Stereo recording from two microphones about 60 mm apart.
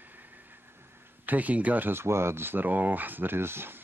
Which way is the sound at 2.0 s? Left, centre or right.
Right.